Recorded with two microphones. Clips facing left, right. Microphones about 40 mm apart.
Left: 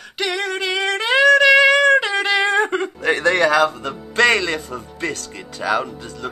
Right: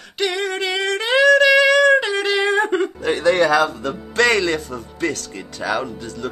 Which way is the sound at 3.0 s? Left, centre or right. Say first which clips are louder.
Left 2 dB; left.